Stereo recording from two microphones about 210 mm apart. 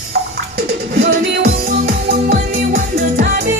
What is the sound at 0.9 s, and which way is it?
Music, 50° right (ahead or behind).